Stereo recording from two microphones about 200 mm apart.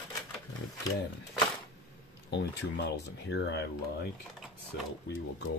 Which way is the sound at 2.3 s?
60° left (ahead or behind).